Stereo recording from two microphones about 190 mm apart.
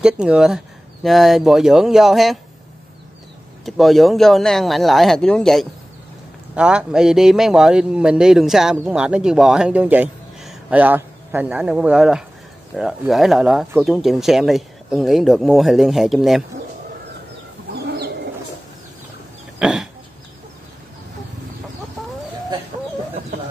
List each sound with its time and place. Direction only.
0.0 s a man's voice: 5° right (ahead or behind)
3.6 s a man's voice: centre (ahead or behind)
17.8 s bird: 60° right (ahead or behind)
19.6 s a sound: 5° right (ahead or behind)